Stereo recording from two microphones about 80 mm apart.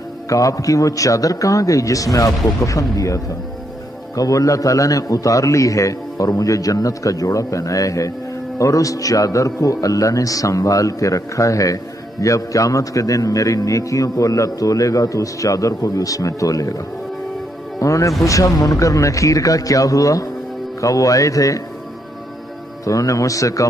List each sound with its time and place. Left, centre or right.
0.3 s a man's voice: left
22.8 s a man's voice: left